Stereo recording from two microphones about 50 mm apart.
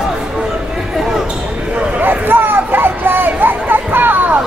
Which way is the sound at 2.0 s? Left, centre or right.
Right.